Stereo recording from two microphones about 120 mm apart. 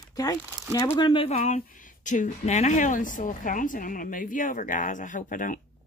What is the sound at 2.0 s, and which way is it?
A woman's voice, 90° left.